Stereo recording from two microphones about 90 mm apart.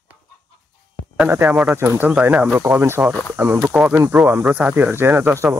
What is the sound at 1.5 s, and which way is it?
Speech, 10° right (ahead or behind).